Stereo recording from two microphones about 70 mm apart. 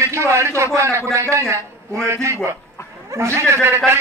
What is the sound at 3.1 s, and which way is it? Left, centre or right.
Speech, right.